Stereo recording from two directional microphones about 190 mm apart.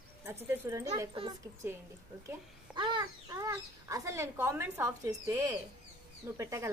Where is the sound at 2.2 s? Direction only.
25° right (ahead or behind).